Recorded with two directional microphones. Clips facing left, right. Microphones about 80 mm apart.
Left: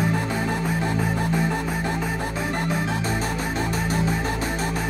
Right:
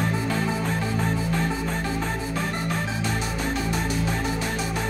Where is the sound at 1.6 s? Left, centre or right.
Centre.